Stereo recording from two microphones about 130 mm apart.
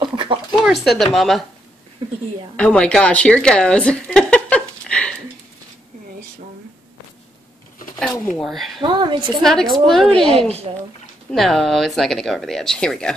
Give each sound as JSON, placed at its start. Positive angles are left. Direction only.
{"t": 0.0, "sound": "a sound", "side_deg": -40}
{"t": 0.6, "sound": "speech", "side_deg": 0}
{"t": 2.5, "sound": "a woman's voice", "side_deg": 10}
{"t": 8.4, "sound": "speech", "side_deg": 0}
{"t": 8.8, "sound": "a woman's voice", "side_deg": -35}
{"t": 9.4, "sound": "speech", "side_deg": 5}